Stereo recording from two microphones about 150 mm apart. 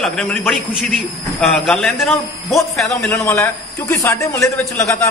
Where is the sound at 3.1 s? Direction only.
15° left (ahead or behind).